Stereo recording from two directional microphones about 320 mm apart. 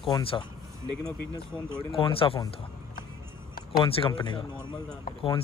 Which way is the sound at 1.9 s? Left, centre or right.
Centre.